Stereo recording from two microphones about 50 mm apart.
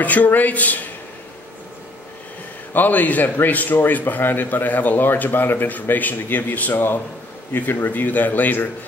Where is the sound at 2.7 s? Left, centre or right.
Left.